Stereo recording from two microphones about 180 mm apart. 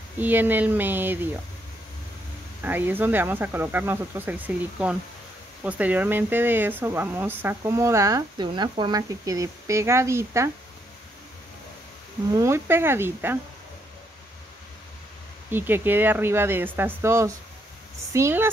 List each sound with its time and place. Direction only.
0.2 s speech: 10° right (ahead or behind)
2.6 s speech: 10° right (ahead or behind)
12.4 s speech: 15° right (ahead or behind)
15.5 s speech: 10° right (ahead or behind)